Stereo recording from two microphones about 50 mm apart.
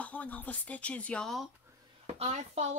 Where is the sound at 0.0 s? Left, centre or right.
Left.